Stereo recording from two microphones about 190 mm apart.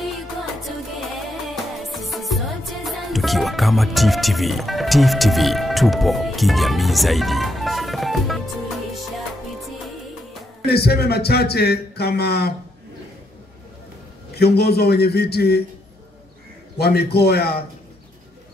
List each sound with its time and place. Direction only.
1.4 s music: centre (ahead or behind)
10.6 s speech: 55° left (ahead or behind)
14.3 s speech: 55° left (ahead or behind)
16.7 s speech: 55° left (ahead or behind)